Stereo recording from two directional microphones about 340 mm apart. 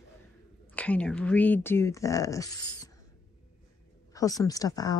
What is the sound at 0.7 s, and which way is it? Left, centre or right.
Speech, centre.